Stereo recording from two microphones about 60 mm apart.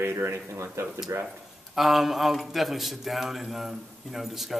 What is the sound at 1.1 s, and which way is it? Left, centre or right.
Speech, right.